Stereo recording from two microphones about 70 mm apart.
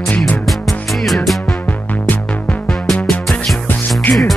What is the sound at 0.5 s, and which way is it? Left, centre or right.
Music, centre.